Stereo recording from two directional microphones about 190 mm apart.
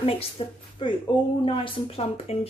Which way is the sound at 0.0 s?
30° left (ahead or behind).